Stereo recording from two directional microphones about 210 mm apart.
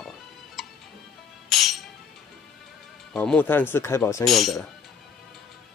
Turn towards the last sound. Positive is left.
turn(degrees=0)  # may be behind; listen again after turning